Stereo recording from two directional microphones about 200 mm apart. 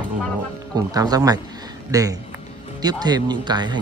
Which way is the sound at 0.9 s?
20° right (ahead or behind).